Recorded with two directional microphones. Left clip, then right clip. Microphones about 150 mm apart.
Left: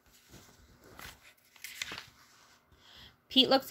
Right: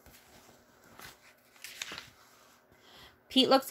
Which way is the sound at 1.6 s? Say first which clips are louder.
Left 1 dB; 70° left (ahead or behind).